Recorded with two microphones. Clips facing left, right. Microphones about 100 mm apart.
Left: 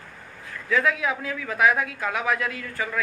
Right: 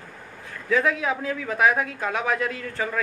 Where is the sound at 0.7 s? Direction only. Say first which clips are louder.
Right 1 dB; 30° right (ahead or behind).